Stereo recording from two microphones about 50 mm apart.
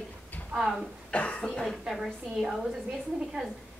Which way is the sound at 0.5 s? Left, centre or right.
Centre.